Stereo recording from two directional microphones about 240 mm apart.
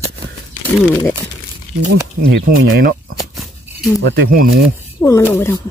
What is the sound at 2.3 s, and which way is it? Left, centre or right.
Speech, right.